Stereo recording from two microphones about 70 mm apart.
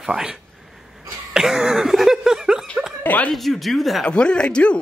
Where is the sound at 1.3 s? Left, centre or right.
Centre.